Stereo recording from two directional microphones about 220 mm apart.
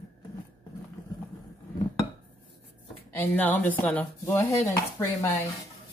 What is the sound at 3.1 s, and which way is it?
Speech, 10° left (ahead or behind).